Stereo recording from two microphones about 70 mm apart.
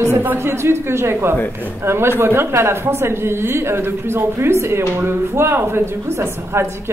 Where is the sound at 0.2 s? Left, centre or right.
Right.